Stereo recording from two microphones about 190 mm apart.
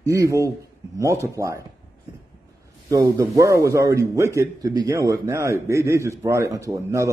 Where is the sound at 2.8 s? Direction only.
15° right (ahead or behind).